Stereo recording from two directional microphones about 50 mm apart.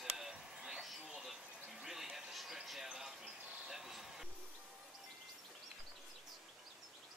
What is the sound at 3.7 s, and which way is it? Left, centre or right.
Vehicle, centre.